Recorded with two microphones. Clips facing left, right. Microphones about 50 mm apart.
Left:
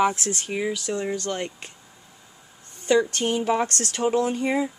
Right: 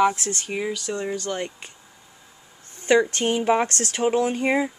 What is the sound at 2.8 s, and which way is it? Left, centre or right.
Speech, right.